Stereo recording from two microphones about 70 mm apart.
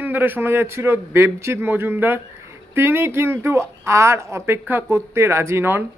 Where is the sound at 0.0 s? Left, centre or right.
Right.